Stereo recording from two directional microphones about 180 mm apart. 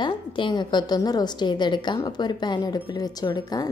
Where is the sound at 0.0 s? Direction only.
25° left (ahead or behind).